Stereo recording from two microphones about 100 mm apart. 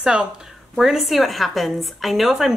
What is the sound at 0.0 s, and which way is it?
Speech, 10° right (ahead or behind).